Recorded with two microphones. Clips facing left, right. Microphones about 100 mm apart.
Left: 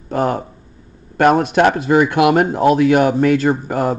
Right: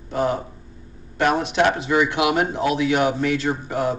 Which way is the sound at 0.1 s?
50° left (ahead or behind).